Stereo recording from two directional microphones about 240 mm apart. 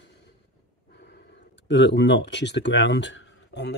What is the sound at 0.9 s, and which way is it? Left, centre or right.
Speech, left.